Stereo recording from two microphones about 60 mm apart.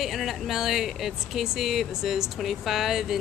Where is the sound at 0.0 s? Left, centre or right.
Centre.